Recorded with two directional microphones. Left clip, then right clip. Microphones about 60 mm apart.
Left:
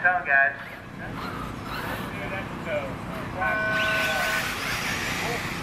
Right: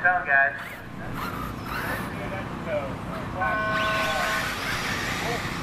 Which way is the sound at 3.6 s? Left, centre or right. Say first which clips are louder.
Left 2 dB; centre.